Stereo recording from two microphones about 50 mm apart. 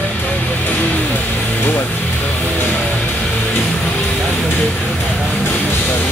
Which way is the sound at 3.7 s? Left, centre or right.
Centre.